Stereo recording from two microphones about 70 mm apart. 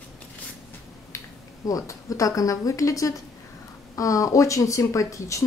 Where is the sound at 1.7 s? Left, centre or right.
Left.